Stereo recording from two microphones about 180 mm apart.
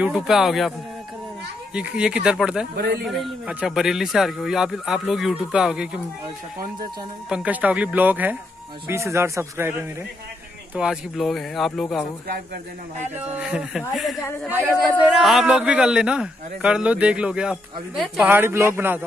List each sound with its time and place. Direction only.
0.0 s a man's voice: centre (ahead or behind)
7.2 s speech: 5° right (ahead or behind)
10.7 s a man's voice: 5° right (ahead or behind)
13.4 s a man's voice: 5° right (ahead or behind)